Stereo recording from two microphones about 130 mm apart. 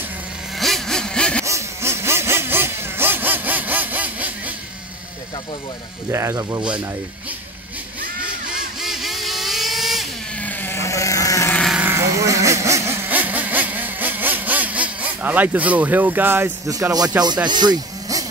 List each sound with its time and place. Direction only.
0.6 s vehicle: centre (ahead or behind)
1.4 s vehicle: 20° right (ahead or behind)
6.0 s speech: 20° right (ahead or behind)
8.2 s vehicle: 5° right (ahead or behind)
10.3 s a sound: 10° left (ahead or behind)
11.5 s sheep: centre (ahead or behind)
11.8 s vehicle: 20° right (ahead or behind)
17.5 s speech: 35° right (ahead or behind)